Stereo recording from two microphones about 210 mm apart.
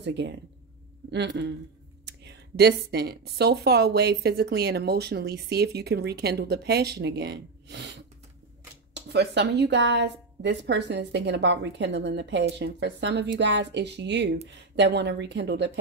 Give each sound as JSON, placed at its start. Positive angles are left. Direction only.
{"t": 0.0, "sound": "a woman's voice", "side_deg": -55}